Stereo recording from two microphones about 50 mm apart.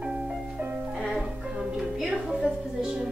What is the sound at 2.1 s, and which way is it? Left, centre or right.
Speech, centre.